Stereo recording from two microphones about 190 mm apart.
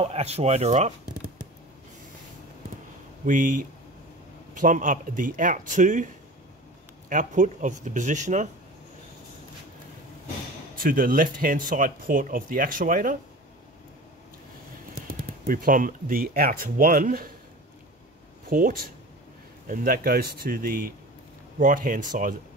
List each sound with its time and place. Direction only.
0.0 s speech: 35° right (ahead or behind)
3.3 s speech: 45° right (ahead or behind)
4.6 s speech: 45° right (ahead or behind)
7.1 s speech: 40° right (ahead or behind)
10.8 s speech: 45° right (ahead or behind)
15.0 s speech: 50° right (ahead or behind)
18.5 s speech: 50° right (ahead or behind)